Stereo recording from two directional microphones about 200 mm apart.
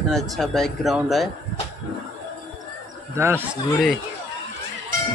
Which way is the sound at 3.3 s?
Centre (ahead or behind).